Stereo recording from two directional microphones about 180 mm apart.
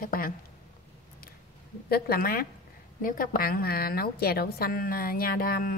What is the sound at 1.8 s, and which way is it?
A woman's voice, 60° left (ahead or behind).